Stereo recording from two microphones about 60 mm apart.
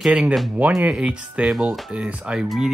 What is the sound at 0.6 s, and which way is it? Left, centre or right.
Speech, right.